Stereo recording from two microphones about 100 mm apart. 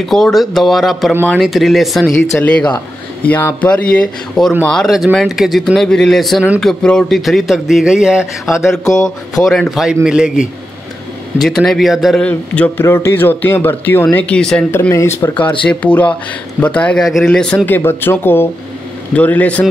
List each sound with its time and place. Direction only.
0.0 s a man's voice: centre (ahead or behind)
2.3 s a man's voice: 10° left (ahead or behind); by 8.3 s 5° right (ahead or behind)
8.6 s a man's voice: 5° left (ahead or behind)
11.3 s a man's voice: 5° left (ahead or behind)
12.2 s a man's voice: 15° left (ahead or behind)
14.7 s speech: 25° left (ahead or behind)
15.6 s a man's voice: 15° left (ahead or behind)
17.6 s a man's voice: 20° left (ahead or behind)